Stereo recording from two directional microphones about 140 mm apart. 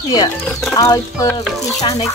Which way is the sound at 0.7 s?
25° left (ahead or behind).